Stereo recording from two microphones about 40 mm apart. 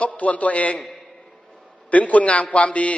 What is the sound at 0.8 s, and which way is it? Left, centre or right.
Speech, centre.